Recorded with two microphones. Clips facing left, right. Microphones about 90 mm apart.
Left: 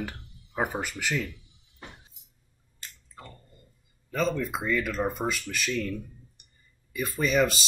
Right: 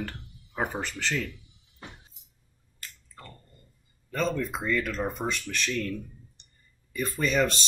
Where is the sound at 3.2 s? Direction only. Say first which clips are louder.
Left 1 dB; 10° left (ahead or behind).